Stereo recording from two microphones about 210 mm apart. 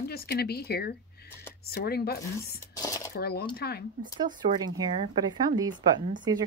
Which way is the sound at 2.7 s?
15° left (ahead or behind).